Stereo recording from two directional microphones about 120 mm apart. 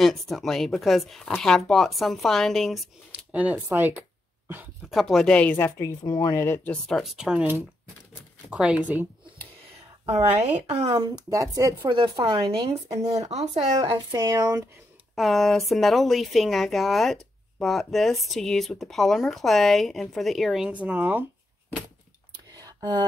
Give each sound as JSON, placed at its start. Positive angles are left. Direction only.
{"t": 0.0, "sound": "speech", "side_deg": 0}
{"t": 3.3, "sound": "speech", "side_deg": -10}
{"t": 4.8, "sound": "speech", "side_deg": 0}
{"t": 5.8, "sound": "speech", "side_deg": 30}
{"t": 6.7, "sound": "speech", "side_deg": 0}
{"t": 10.5, "sound": "speech", "side_deg": -65}
{"t": 11.0, "sound": "speech", "side_deg": -30}
{"t": 12.3, "sound": "speech", "side_deg": -45}
{"t": 13.2, "sound": "speech", "side_deg": -65}
{"t": 13.7, "sound": "speech", "side_deg": -45}
{"t": 14.1, "sound": "speech", "side_deg": -30}
{"t": 15.1, "sound": "speech", "side_deg": 0}
{"t": 22.6, "sound": "a sound", "side_deg": -30}